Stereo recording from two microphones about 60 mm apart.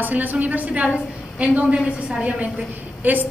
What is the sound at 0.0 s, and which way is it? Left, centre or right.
A woman's voice, right.